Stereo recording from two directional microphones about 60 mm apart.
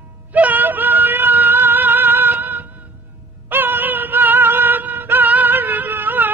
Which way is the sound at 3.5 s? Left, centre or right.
Right.